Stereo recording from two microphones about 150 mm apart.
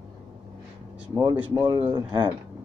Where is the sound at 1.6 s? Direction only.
30° right (ahead or behind).